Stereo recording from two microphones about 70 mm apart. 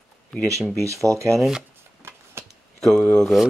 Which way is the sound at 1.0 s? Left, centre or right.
Right.